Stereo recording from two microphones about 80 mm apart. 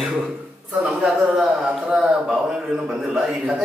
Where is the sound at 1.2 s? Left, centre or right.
Centre.